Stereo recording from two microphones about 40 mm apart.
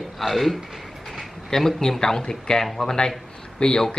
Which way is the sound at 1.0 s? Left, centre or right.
Centre.